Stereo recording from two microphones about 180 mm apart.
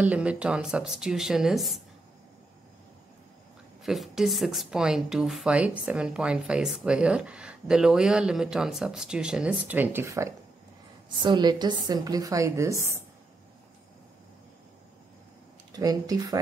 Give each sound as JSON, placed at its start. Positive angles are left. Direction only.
{"t": 0.0, "sound": "a woman's voice", "side_deg": -5}
{"t": 3.8, "sound": "a woman's voice", "side_deg": 0}
{"t": 15.7, "sound": "a woman's voice", "side_deg": -20}